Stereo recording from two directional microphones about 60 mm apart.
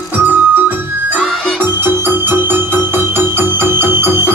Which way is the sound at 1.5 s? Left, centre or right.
Right.